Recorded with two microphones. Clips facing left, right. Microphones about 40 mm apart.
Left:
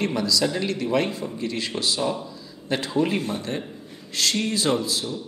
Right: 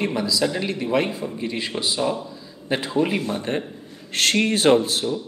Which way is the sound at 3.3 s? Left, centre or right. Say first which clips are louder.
Right 3 dB; right.